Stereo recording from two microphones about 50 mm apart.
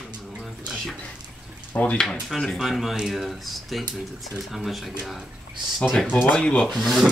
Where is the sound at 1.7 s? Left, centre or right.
Left.